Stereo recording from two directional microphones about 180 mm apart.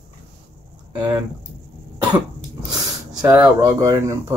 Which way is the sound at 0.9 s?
20° right (ahead or behind).